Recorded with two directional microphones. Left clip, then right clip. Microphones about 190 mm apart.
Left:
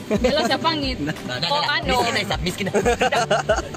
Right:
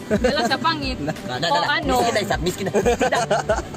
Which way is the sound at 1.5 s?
15° right (ahead or behind).